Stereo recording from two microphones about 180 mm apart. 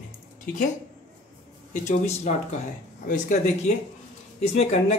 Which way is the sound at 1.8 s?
40° left (ahead or behind).